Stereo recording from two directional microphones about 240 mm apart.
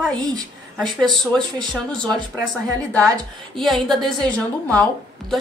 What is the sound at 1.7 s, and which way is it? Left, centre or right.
Speech, centre.